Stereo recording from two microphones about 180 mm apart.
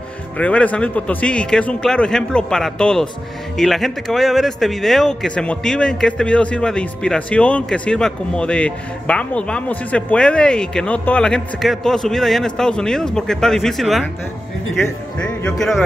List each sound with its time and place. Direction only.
0.4 s speech: 5° left (ahead or behind)